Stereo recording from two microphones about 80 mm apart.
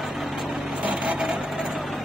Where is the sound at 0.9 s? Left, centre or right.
Centre.